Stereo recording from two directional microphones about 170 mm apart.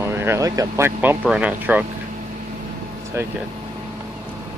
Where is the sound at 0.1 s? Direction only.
15° right (ahead or behind).